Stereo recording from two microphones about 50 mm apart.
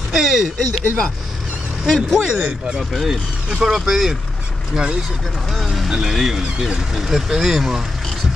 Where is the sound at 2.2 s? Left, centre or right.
Centre.